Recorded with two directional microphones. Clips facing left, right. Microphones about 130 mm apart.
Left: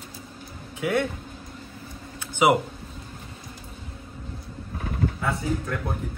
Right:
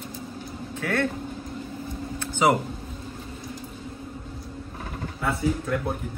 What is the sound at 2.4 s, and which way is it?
Speech, 10° left (ahead or behind).